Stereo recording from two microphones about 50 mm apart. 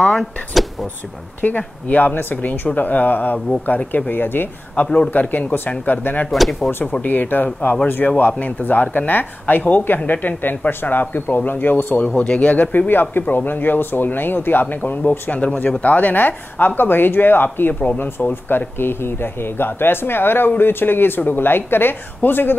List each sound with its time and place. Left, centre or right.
1.4 s speech: left
4.8 s a man's voice: centre
5.3 s speech: left
6.3 s speech: centre
6.7 s speech: left
12.2 s speech: left